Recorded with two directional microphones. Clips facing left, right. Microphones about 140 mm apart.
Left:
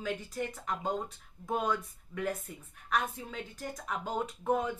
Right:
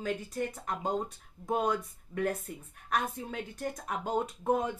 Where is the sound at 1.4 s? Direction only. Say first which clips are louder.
Right 2 dB; 45° right (ahead or behind).